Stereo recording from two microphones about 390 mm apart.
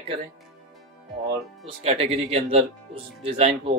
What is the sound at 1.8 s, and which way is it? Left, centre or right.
A man's voice, centre.